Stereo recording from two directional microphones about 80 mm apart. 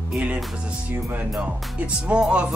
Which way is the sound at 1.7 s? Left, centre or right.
Centre.